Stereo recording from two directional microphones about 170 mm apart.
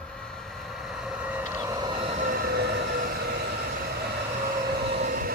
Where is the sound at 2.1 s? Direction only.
55° right (ahead or behind); by 3.0 s 85° right.